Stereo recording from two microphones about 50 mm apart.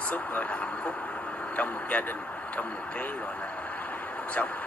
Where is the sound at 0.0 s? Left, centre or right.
Left.